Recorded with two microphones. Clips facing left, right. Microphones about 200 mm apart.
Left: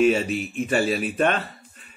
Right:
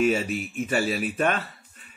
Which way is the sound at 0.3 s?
5° right (ahead or behind).